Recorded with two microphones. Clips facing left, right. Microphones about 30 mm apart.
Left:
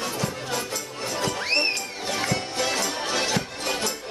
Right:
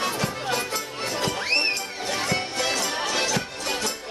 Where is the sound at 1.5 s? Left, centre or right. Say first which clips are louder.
Even; centre.